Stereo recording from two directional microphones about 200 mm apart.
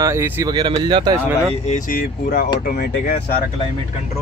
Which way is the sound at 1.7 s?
40° left (ahead or behind).